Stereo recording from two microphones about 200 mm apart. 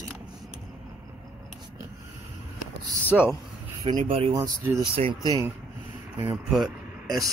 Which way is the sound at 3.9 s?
30° right (ahead or behind).